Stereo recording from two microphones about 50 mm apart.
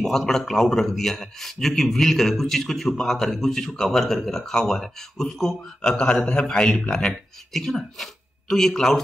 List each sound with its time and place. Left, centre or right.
0.0 s a man's voice: centre